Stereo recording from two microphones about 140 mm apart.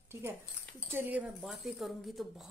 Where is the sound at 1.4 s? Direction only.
Centre (ahead or behind).